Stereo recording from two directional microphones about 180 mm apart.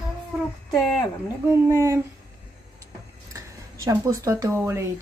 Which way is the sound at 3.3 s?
20° right (ahead or behind).